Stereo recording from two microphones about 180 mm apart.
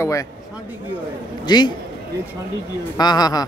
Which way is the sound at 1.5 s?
25° left (ahead or behind).